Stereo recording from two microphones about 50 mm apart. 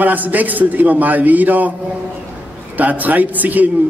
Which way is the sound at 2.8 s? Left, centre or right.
Right.